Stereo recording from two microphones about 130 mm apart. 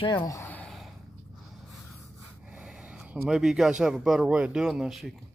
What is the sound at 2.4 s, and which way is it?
Speech, 5° right (ahead or behind).